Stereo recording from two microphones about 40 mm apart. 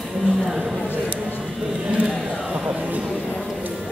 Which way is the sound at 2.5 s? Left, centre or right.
Right.